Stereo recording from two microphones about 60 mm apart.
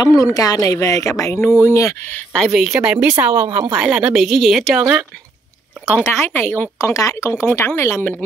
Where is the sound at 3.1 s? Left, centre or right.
Right.